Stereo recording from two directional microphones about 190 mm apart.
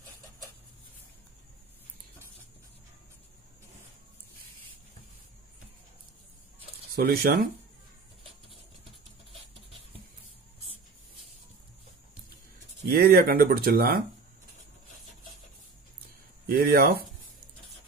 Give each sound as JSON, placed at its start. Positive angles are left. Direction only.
{"t": 7.0, "sound": "speech", "side_deg": -55}
{"t": 12.8, "sound": "speech", "side_deg": -55}
{"t": 16.4, "sound": "speech", "side_deg": -50}